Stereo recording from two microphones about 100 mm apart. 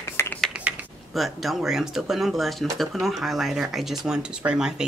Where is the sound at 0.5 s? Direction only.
15° right (ahead or behind).